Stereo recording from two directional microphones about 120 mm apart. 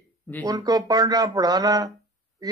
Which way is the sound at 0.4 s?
35° right (ahead or behind).